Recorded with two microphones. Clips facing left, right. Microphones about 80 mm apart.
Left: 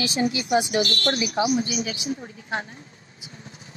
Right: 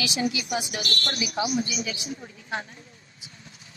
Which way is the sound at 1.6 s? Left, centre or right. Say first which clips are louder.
Left 4 dB; left.